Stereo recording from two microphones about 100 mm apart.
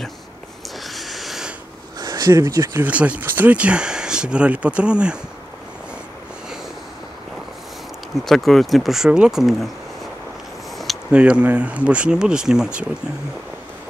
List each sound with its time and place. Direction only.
0.8 s a sound: centre (ahead or behind)
2.0 s speech: 40° right (ahead or behind)
2.8 s speech: 15° right (ahead or behind)
8.3 s speech: 5° left (ahead or behind)
11.1 s speech: 10° right (ahead or behind)